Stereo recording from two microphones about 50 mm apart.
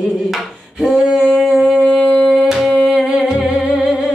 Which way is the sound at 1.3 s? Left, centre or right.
Centre.